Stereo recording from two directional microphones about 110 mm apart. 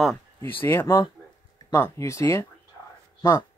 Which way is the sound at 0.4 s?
20° left (ahead or behind).